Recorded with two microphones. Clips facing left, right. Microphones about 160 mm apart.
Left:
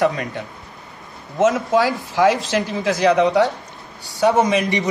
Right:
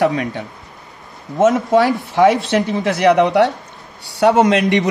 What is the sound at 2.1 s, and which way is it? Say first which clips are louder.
Speech: right 3 dB; 65° right (ahead or behind).